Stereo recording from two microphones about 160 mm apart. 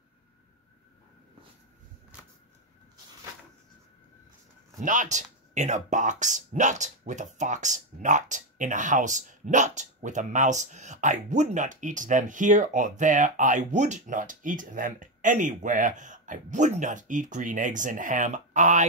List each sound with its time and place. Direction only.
4.7 s speech: 50° right (ahead or behind)